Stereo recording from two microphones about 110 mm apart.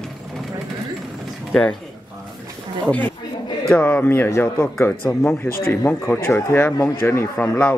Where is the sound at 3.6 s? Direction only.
15° left (ahead or behind).